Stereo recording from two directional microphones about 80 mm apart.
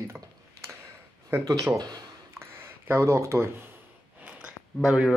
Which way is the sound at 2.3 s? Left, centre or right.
Right.